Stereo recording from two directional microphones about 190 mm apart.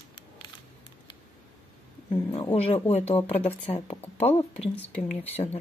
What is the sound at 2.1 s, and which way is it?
Speech, 30° left (ahead or behind).